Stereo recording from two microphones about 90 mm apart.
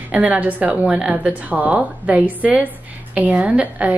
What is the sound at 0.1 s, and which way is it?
Speech, 15° right (ahead or behind).